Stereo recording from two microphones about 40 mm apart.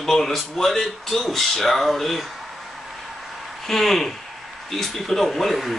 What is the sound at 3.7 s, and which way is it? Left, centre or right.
Speech, centre.